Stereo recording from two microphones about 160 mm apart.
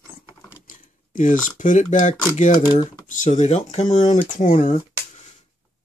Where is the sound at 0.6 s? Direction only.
55° left (ahead or behind).